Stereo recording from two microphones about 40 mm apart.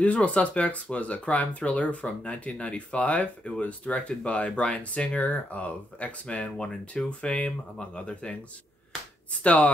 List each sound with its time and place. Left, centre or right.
0.0 s speech: left
9.4 s speech: left